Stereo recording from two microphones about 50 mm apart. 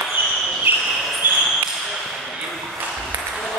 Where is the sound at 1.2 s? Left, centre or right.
Right.